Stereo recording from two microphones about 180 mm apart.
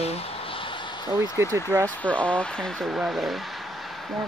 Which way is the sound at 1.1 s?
15° right (ahead or behind).